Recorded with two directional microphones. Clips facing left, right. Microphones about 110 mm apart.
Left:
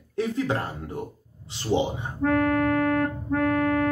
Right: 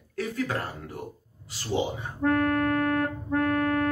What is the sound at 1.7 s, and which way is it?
Speech, 25° left (ahead or behind).